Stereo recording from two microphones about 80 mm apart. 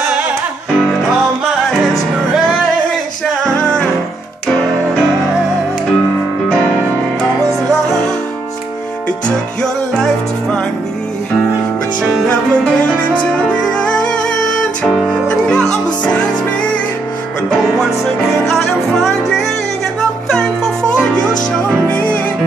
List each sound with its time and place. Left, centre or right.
7.4 s music: centre
9.6 s music: centre
12.0 s music: centre
12.3 s music: centre
18.5 s music: centre; by 22.2 s left